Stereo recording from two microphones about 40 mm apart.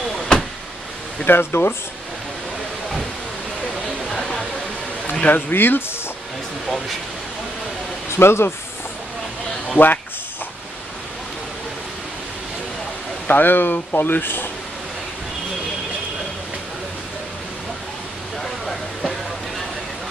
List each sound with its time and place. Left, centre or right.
0.3 s vehicle: centre
1.2 s speech: left
4.1 s a sound: centre
5.3 s speech: left
8.2 s speech: left
9.8 s speech: left
13.3 s speech: left
18.4 s vehicle: centre